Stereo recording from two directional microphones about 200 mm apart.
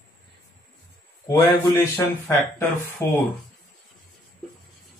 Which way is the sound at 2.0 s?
15° left (ahead or behind).